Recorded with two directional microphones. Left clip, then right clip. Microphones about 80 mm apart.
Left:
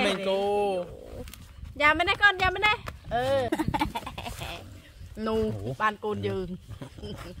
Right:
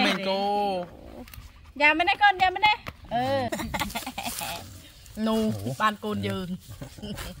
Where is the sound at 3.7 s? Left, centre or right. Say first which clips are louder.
Left 1 dB; left.